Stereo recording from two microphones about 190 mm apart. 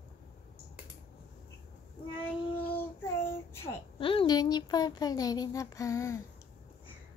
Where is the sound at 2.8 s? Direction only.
10° left (ahead or behind).